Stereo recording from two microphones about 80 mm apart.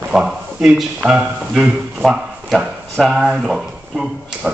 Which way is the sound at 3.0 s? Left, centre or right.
Centre.